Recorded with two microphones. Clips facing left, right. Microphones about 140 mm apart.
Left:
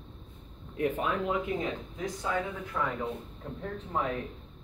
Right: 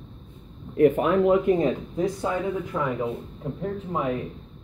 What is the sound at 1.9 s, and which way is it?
Speech, 30° right (ahead or behind).